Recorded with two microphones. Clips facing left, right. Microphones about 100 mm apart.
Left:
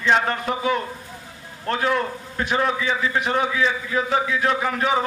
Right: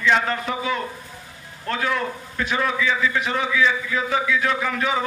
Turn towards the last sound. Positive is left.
turn(degrees=25)  # may be behind; listen again after turning